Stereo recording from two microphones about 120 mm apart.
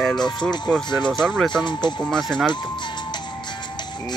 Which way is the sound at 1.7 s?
40° left (ahead or behind).